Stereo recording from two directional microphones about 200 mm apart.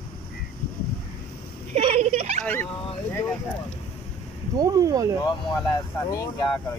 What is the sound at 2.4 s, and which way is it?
Speech, 10° left (ahead or behind).